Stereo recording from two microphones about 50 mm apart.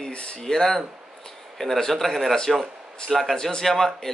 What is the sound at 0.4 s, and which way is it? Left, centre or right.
A man's voice, centre.